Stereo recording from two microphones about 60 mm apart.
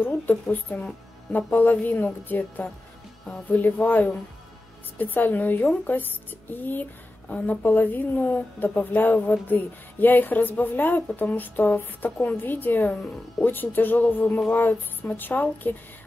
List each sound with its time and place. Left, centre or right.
0.0 s a woman's voice: left